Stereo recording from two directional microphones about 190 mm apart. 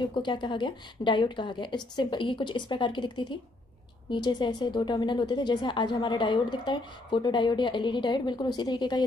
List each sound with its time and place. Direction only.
0.0 s a woman's voice: 25° left (ahead or behind)